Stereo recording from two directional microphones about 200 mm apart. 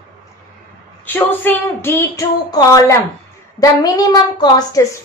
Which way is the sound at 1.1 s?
10° left (ahead or behind).